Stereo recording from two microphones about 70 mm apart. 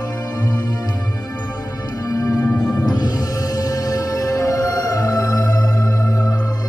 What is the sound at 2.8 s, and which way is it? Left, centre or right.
Music, left.